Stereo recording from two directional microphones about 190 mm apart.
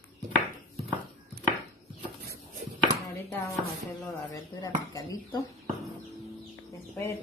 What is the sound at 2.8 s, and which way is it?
Chopping, 15° left (ahead or behind).